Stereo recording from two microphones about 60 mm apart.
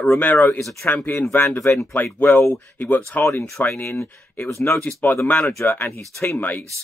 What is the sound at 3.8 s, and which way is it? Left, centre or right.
Speech, left.